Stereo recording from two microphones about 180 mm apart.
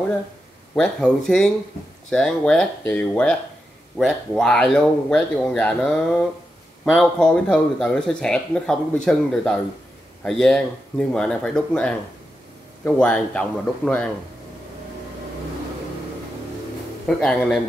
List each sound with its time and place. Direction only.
0.7 s a man's voice: 5° left (ahead or behind)
6.8 s a man's voice: 5° left (ahead or behind)
17.2 s speech: 5° left (ahead or behind)